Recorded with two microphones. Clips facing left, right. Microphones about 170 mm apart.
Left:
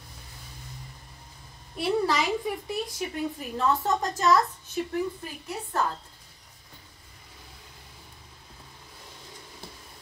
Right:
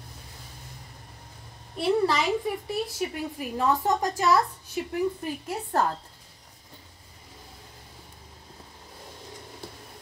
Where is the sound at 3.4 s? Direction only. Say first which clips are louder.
Right 3 dB; 15° right (ahead or behind).